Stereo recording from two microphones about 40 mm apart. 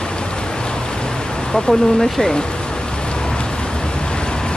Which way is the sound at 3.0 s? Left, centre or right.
Left.